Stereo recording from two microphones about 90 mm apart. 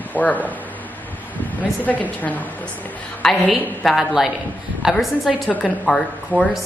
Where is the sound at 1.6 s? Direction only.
15° left (ahead or behind).